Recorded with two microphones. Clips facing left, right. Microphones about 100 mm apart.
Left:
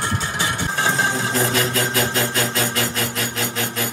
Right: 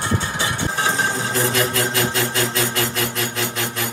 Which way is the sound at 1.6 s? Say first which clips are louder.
Even; 40° left (ahead or behind).